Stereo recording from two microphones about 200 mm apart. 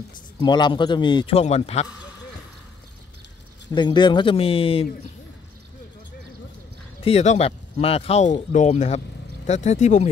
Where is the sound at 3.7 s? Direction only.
20° left (ahead or behind).